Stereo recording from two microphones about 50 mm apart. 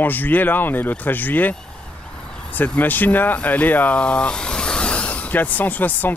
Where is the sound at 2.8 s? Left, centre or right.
Left.